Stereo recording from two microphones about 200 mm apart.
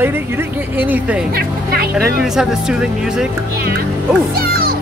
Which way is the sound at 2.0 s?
Centre (ahead or behind).